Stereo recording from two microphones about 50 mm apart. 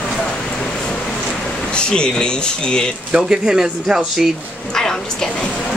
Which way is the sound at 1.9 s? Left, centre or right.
Centre.